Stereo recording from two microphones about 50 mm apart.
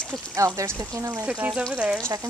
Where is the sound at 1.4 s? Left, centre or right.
Right.